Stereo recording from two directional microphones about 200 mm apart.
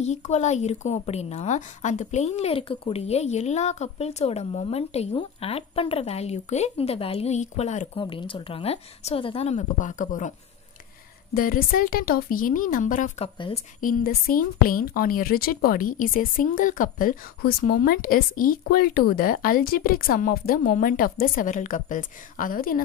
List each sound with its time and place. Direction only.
0.0 s a woman's voice: 35° left (ahead or behind)
8.0 s speech: 25° left (ahead or behind)
11.3 s a woman's voice: 45° left (ahead or behind)